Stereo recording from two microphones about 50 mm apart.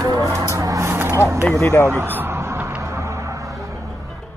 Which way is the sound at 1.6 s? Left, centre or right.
Left.